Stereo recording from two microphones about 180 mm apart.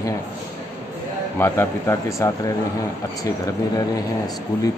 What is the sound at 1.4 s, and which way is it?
A man's voice, 15° left (ahead or behind).